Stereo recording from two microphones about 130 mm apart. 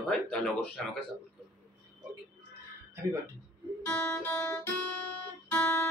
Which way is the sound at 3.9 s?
15° left (ahead or behind).